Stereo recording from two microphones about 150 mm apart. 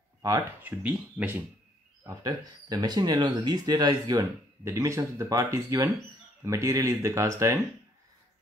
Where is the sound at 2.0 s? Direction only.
25° right (ahead or behind).